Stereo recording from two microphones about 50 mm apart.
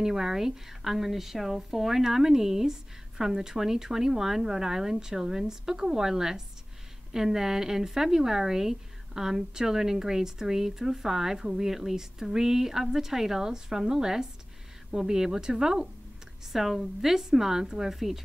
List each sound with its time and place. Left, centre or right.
0.0 s speech: centre